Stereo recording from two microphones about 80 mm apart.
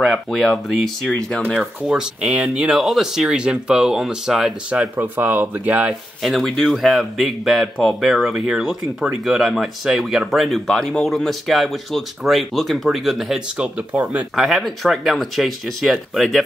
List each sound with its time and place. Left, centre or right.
0.0 s speech: centre
4.6 s speech: centre
6.2 s speech: centre
13.6 s speech: centre
14.3 s speech: centre